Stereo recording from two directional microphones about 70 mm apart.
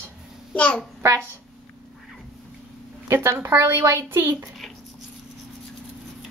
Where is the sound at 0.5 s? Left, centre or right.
Centre.